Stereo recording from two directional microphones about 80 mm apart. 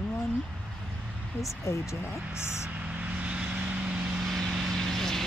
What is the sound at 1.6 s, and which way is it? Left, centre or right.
Speech, left.